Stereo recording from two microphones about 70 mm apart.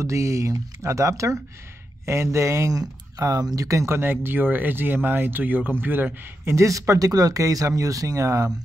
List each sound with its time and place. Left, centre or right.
0.0 s speech: right
2.8 s speech: right
6.4 s speech: right